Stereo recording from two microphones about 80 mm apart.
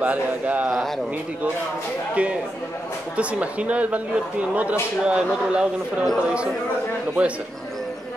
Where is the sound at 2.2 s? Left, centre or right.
Centre.